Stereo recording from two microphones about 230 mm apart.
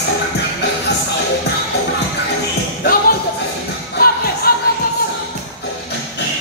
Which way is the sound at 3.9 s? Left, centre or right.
Left.